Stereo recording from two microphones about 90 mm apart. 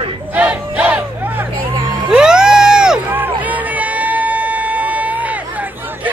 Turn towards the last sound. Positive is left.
turn(degrees=-15)  # may be behind; listen again after turning